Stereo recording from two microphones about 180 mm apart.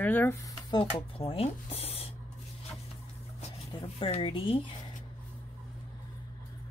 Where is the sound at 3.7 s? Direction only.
30° left (ahead or behind).